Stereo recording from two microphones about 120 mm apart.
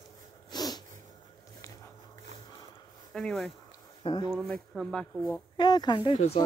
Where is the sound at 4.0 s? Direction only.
45° left (ahead or behind).